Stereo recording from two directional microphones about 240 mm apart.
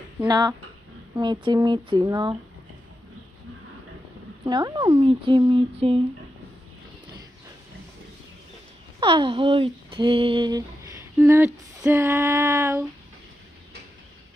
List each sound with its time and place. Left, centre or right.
0.2 s speech: centre
4.5 s speech: centre
9.0 s speech: right